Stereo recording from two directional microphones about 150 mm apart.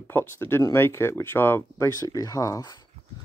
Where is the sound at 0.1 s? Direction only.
15° left (ahead or behind).